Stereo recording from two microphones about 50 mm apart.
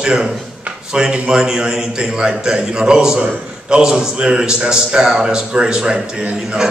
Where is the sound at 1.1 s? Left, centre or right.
Centre.